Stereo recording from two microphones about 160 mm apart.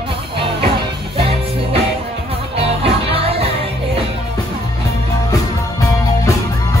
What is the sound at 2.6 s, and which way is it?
Music, 35° right (ahead or behind).